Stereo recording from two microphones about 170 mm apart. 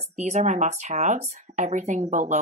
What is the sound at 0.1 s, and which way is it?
Speech, 40° right (ahead or behind).